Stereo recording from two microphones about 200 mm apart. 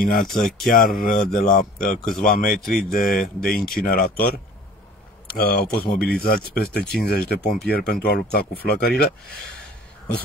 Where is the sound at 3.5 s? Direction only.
Centre (ahead or behind).